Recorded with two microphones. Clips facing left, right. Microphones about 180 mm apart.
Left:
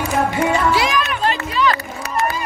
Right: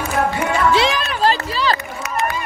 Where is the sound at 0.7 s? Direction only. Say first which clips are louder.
Right 1 dB; 30° right (ahead or behind).